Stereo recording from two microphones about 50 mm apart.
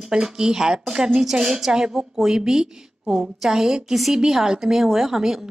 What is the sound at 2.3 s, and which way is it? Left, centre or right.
A woman's voice, centre.